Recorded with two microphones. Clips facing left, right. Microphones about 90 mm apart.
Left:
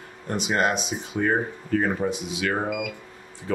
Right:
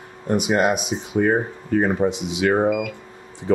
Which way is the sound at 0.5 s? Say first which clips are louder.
Right 4 dB; 10° right (ahead or behind).